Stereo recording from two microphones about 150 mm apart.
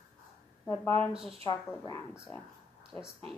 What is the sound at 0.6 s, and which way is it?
Speech, 15° left (ahead or behind).